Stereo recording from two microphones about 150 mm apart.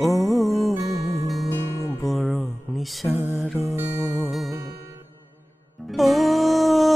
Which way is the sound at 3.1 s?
15° right (ahead or behind).